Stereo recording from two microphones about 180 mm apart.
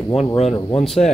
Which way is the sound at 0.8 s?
Centre (ahead or behind).